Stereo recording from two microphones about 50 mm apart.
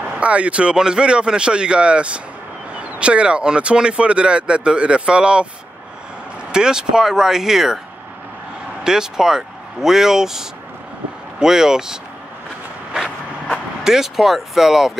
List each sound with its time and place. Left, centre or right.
0.0 s speech: right
6.5 s speech: centre
8.8 s speech: centre
12.9 s vehicle: centre